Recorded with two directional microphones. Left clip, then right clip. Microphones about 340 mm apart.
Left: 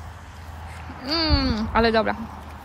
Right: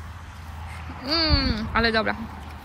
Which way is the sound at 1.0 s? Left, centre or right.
Centre.